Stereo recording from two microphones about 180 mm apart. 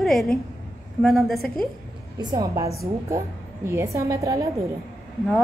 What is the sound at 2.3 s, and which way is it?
A woman's voice, 20° right (ahead or behind).